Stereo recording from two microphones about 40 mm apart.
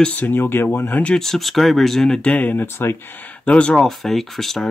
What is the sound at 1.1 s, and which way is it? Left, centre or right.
Speech, centre.